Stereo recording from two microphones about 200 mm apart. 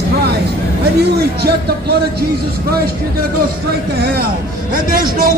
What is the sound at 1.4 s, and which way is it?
Speech, 55° right (ahead or behind).